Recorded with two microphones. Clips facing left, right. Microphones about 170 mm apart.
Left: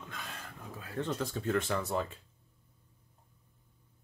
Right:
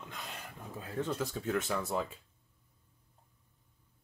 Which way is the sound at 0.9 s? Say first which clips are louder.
Even; 5° right (ahead or behind).